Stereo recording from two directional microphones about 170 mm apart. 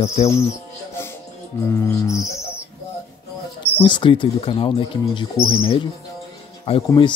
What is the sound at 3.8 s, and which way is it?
Speech, 30° left (ahead or behind).